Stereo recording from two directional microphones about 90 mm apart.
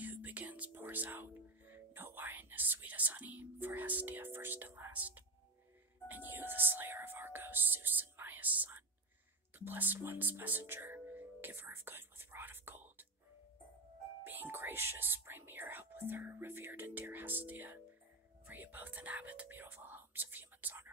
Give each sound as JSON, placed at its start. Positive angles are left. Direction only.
{"t": 0.0, "sound": "music", "side_deg": -20}
{"t": 6.0, "sound": "whispering", "side_deg": -20}
{"t": 9.6, "sound": "music", "side_deg": -20}
{"t": 14.2, "sound": "speech", "side_deg": -20}
{"t": 18.5, "sound": "whispering", "side_deg": -20}